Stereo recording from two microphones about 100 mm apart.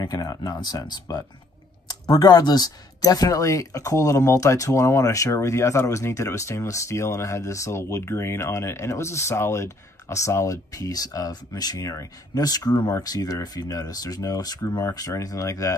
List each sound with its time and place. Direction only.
0.0 s speech: 40° left (ahead or behind)